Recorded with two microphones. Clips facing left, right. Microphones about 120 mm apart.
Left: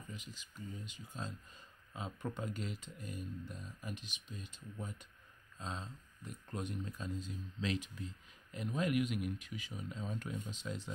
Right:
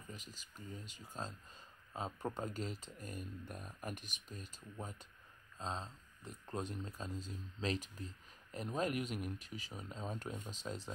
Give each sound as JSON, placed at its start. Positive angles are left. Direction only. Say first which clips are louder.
{"t": 0.1, "sound": "speech", "louder": "even", "side_deg": -40}
{"t": 5.6, "sound": "speech", "louder": "right 2 dB", "side_deg": -35}